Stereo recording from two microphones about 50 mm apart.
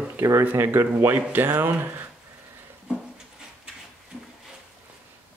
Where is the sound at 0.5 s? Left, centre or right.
Right.